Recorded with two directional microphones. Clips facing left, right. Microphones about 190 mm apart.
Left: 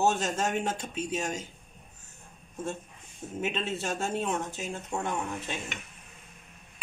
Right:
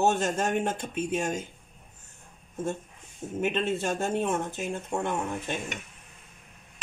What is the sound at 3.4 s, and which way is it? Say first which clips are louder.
Speech: right 5 dB; 55° right (ahead or behind).